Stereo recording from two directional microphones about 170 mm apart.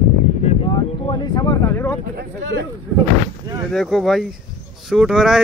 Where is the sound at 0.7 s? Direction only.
25° left (ahead or behind).